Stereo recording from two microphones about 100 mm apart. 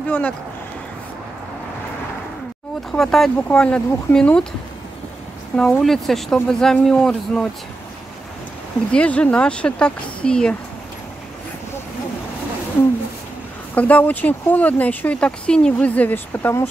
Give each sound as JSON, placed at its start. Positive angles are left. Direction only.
{"t": 0.0, "sound": "a sound", "side_deg": 15}
{"t": 2.9, "sound": "speech", "side_deg": 5}
{"t": 5.6, "sound": "speech", "side_deg": 5}
{"t": 8.9, "sound": "speech", "side_deg": 10}
{"t": 13.7, "sound": "speech", "side_deg": 15}